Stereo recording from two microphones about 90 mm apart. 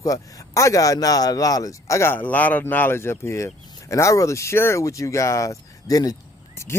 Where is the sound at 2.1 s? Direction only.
20° left (ahead or behind); by 6.1 s 40° left (ahead or behind).